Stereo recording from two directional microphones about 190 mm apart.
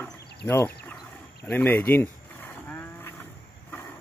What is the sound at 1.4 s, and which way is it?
Livestock, 10° left (ahead or behind).